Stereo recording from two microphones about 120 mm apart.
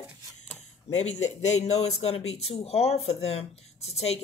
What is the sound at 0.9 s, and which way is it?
Speech, 65° left (ahead or behind).